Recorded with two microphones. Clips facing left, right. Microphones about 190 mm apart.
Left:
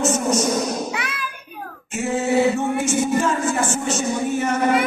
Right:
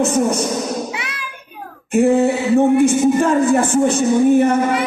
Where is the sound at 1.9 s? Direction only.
60° right (ahead or behind).